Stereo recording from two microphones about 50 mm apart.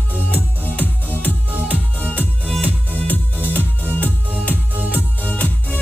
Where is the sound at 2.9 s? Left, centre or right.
Left.